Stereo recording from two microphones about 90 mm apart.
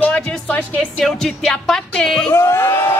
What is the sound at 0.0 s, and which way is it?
Music, 10° left (ahead or behind).